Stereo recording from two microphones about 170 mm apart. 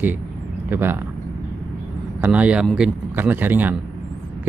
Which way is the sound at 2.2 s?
10° right (ahead or behind).